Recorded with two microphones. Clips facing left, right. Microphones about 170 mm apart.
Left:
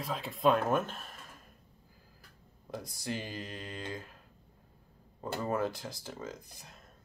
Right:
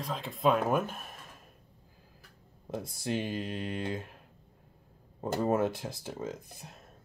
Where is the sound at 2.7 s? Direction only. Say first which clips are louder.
Right 5 dB; 25° right (ahead or behind).